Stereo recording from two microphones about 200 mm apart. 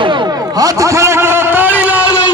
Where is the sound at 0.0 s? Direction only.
25° right (ahead or behind).